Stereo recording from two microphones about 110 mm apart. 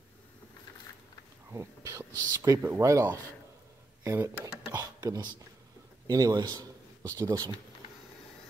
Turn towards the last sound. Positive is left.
turn(degrees=-30)  # may be behind; listen again after turning